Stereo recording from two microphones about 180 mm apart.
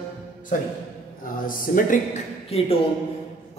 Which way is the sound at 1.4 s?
50° left (ahead or behind).